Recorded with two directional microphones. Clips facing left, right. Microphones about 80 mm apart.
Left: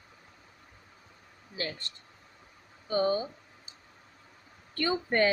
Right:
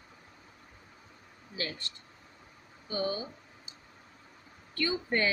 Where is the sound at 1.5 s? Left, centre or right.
Left.